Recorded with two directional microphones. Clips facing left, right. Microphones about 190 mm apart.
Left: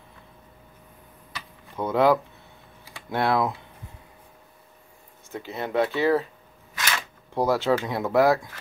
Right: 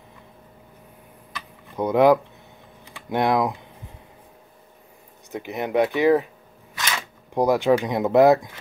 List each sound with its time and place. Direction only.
1.8 s speech: 15° right (ahead or behind)
5.3 s speech: 15° right (ahead or behind)
7.3 s speech: 15° right (ahead or behind)